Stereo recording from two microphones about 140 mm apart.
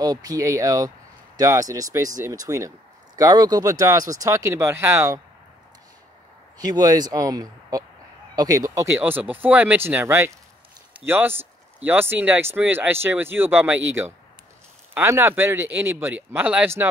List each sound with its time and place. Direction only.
0.0 s speech: 25° right (ahead or behind)
6.6 s speech: 25° right (ahead or behind)